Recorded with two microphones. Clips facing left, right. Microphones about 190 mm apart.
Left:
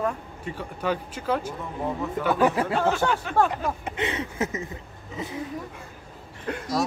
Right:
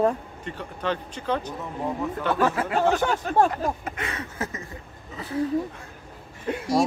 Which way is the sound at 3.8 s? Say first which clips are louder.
Left 4 dB; 20° left (ahead or behind).